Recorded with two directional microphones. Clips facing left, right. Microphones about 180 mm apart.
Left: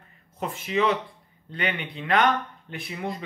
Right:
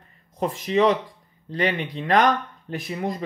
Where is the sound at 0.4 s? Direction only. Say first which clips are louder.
Right 5 dB; 35° right (ahead or behind).